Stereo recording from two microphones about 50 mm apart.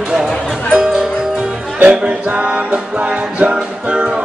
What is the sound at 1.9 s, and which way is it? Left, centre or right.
Music, right.